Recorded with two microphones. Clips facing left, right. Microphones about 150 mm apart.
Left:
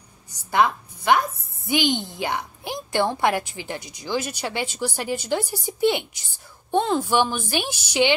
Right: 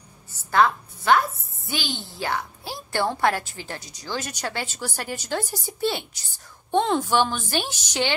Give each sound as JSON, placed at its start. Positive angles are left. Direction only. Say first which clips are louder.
{"t": 0.3, "sound": "a sound", "louder": "even", "side_deg": 15}
{"t": 1.7, "sound": "a woman's voice", "louder": "left 9 dB", "side_deg": 20}
{"t": 6.7, "sound": "a woman's voice", "louder": "even", "side_deg": 5}